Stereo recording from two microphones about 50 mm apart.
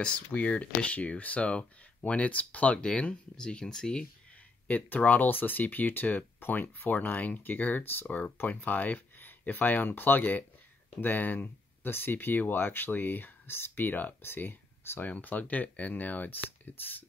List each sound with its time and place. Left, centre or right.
0.0 s speech: left
4.6 s speech: left